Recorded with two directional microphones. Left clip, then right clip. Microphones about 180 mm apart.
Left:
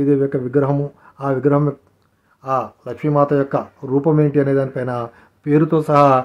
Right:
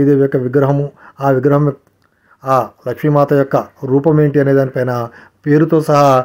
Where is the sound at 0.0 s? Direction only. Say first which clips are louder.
Right 5 dB; 30° right (ahead or behind).